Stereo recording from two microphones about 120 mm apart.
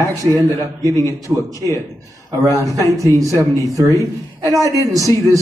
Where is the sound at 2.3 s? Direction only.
30° right (ahead or behind).